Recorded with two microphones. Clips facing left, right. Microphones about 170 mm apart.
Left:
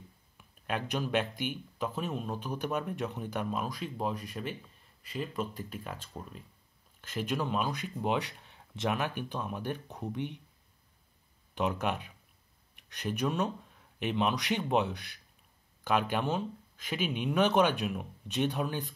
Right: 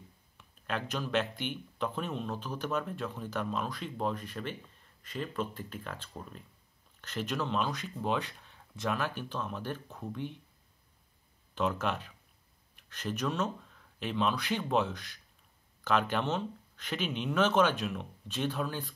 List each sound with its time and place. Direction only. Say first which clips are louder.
0.4 s speech: left 1 dB; 15° left (ahead or behind)
11.5 s speech: even; 15° left (ahead or behind)